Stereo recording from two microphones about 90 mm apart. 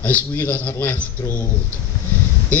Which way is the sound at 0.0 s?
20° left (ahead or behind).